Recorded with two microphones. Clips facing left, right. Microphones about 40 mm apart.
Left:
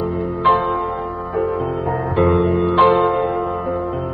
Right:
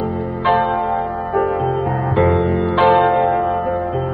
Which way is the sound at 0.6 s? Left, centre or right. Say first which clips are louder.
Right 3 dB; right.